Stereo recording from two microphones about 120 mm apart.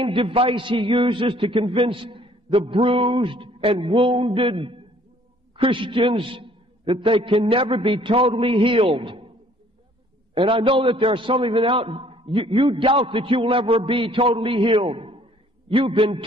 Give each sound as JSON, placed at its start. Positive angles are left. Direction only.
{"t": 0.0, "sound": "a man's voice", "side_deg": -50}
{"t": 10.3, "sound": "a man's voice", "side_deg": -45}